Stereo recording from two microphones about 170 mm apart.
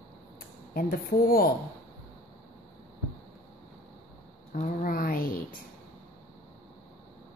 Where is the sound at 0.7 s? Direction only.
60° left (ahead or behind).